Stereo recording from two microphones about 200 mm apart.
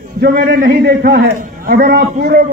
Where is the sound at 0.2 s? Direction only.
45° right (ahead or behind).